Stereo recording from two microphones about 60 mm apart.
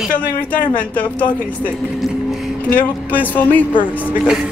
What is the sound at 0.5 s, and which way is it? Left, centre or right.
Speech, left.